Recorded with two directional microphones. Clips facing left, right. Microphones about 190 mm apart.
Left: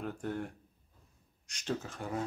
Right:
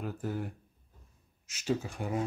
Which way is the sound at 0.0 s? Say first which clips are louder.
Right 1 dB; 5° right (ahead or behind).